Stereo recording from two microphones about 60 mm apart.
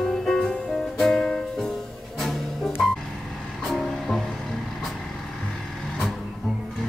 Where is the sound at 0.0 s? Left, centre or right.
Centre.